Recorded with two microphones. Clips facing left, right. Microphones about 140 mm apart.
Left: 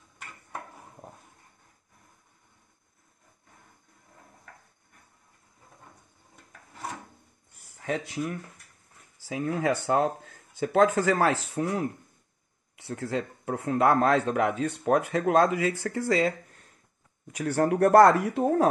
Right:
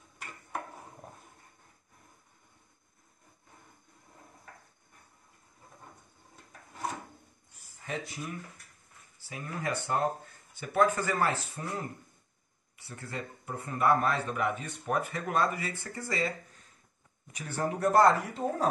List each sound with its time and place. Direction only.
7.8 s speech: 70° left (ahead or behind)
9.2 s speech: 90° left; by 16.3 s 70° left (ahead or behind)
17.4 s speech: 75° left (ahead or behind)